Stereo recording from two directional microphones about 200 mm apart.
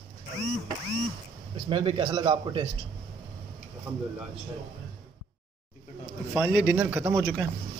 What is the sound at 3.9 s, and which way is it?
Speech, 5° right (ahead or behind).